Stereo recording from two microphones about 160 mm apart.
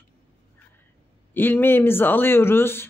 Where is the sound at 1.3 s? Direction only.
10° left (ahead or behind).